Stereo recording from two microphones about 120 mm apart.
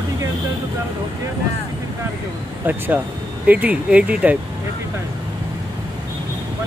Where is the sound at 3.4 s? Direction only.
15° right (ahead or behind).